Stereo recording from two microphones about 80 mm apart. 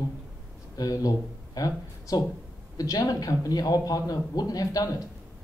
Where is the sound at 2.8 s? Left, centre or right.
Left.